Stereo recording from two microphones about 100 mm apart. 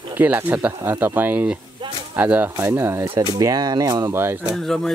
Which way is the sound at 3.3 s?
40° right (ahead or behind).